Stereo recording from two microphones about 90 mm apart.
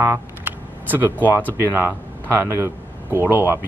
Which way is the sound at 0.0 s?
20° right (ahead or behind).